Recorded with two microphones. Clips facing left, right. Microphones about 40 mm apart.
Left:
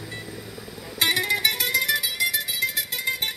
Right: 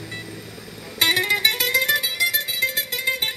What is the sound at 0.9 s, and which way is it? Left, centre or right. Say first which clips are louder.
Music: right 3 dB; right.